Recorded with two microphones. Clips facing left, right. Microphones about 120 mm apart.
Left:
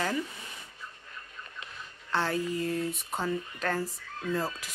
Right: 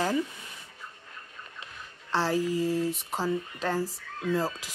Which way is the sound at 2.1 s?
35° right (ahead or behind).